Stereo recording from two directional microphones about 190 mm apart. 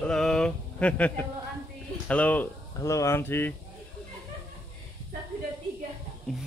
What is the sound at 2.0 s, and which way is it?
Speech, 5° left (ahead or behind).